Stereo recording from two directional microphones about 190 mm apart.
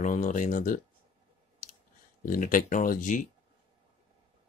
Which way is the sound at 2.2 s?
45° left (ahead or behind).